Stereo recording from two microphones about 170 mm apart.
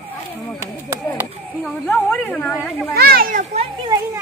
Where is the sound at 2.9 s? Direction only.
65° right (ahead or behind).